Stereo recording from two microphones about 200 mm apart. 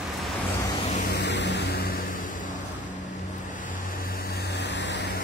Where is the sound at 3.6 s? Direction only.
45° left (ahead or behind); by 5.1 s 60° left (ahead or behind).